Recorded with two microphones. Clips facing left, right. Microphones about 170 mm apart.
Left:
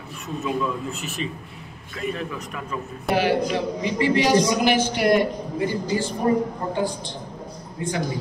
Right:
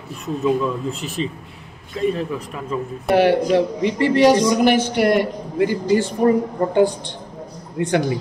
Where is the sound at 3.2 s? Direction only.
65° right (ahead or behind).